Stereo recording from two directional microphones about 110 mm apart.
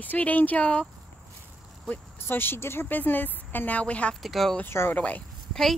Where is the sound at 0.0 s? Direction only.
15° left (ahead or behind).